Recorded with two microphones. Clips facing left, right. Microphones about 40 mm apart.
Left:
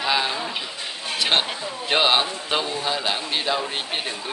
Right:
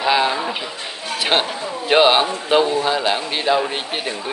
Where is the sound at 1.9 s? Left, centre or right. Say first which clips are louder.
Right 6 dB; centre.